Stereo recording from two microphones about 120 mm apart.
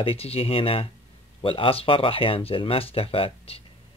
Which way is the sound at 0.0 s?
55° left (ahead or behind).